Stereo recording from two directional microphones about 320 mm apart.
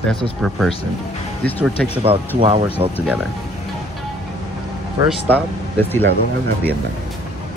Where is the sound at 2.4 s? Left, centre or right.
Centre.